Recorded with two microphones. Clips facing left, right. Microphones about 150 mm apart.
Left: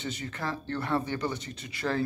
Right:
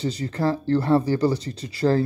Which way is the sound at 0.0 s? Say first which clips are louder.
Right 11 dB; 35° right (ahead or behind).